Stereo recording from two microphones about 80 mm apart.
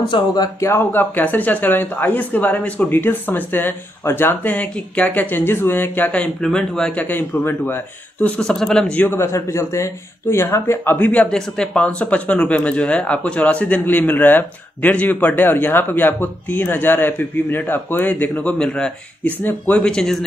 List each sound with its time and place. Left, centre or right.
0.1 s a man's voice: left
0.6 s speech: left
0.9 s speech: left
8.4 s speech: centre
8.9 s speech: left
11.0 s speech: centre
19.4 s speech: left
19.8 s speech: centre